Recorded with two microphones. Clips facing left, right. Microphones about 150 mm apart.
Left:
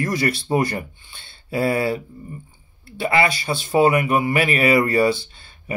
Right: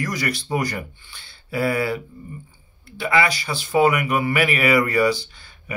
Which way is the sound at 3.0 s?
30° left (ahead or behind).